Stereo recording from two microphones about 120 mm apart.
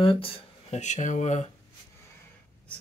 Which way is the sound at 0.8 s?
80° left.